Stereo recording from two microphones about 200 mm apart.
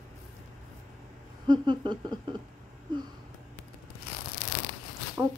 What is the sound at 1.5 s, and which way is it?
Speech, 20° right (ahead or behind).